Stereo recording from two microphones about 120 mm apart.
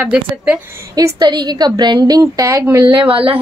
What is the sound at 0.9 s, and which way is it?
A woman's voice, 35° right (ahead or behind).